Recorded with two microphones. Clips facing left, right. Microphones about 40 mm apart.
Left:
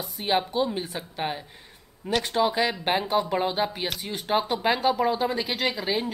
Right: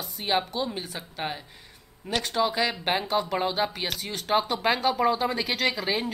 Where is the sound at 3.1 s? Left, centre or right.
Centre.